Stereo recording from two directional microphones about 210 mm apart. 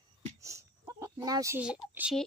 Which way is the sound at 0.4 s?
15° right (ahead or behind).